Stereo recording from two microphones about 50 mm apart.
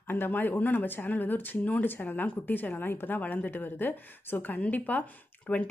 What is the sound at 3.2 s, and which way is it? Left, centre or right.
A woman's voice, left.